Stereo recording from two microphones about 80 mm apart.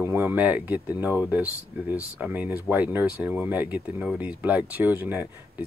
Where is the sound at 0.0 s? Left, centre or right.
Right.